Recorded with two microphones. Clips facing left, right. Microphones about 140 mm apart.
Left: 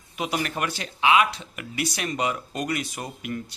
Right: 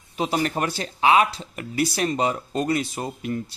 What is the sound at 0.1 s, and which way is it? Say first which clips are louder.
Speech: right 4 dB; 30° right (ahead or behind).